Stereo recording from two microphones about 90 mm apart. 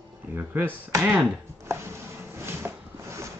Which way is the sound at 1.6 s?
30° right (ahead or behind).